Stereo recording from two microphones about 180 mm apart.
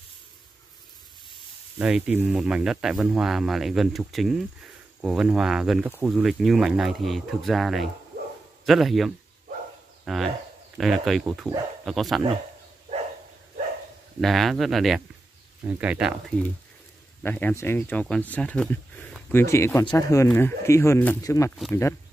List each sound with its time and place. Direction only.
1.3 s speech: 5° right (ahead or behind)
14.2 s speech: centre (ahead or behind)
17.2 s speech: 10° left (ahead or behind)
19.3 s speech: 15° left (ahead or behind)